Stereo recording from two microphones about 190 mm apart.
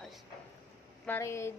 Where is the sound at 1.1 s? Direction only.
15° left (ahead or behind).